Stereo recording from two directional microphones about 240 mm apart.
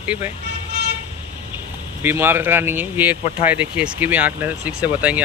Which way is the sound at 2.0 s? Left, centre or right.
Centre.